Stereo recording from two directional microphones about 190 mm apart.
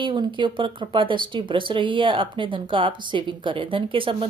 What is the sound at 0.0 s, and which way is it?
A woman's voice, 25° right (ahead or behind).